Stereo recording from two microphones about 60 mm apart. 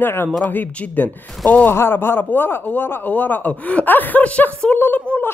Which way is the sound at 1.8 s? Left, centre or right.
Left.